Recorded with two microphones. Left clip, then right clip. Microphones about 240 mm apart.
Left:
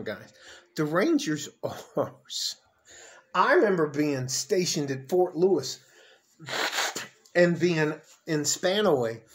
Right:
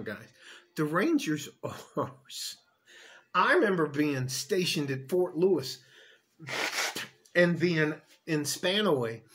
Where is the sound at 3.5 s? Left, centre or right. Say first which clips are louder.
Left 5 dB; centre.